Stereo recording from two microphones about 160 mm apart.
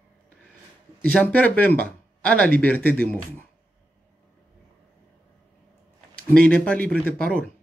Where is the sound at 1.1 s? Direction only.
10° left (ahead or behind).